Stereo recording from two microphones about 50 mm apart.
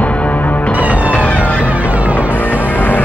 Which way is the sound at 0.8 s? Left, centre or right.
Right.